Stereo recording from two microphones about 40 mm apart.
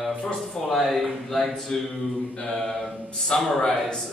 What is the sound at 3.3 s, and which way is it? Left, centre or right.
Speech, left.